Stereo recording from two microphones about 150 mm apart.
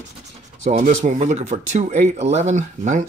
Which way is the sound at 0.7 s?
50° right (ahead or behind).